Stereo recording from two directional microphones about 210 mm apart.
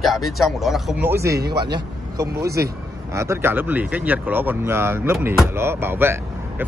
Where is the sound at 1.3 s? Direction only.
50° right (ahead or behind).